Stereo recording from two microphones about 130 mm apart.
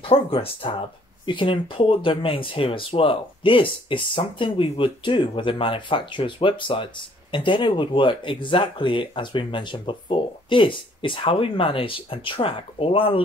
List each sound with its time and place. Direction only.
0.0 s speech: 45° left (ahead or behind)